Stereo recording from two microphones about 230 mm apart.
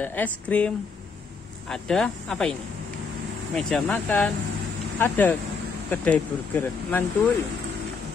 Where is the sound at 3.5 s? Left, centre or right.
Centre.